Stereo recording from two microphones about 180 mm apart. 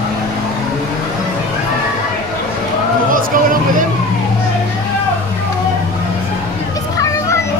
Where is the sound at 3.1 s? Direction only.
50° right (ahead or behind).